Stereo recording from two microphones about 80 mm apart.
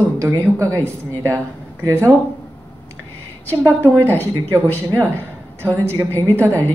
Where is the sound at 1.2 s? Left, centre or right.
Right.